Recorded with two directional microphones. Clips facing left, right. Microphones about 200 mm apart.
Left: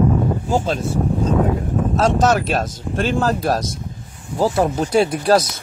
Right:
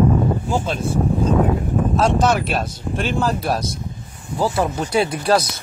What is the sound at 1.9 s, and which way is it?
Speech, 40° left (ahead or behind).